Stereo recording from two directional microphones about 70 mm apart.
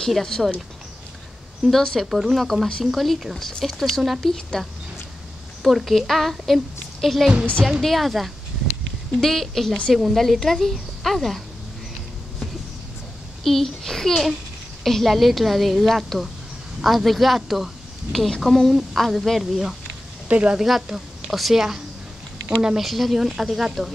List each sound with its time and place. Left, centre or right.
0.0 s speech: centre
1.7 s speech: centre
13.4 s speech: centre
20.2 s a woman's voice: centre
20.6 s a woman's voice: centre
22.8 s speech: centre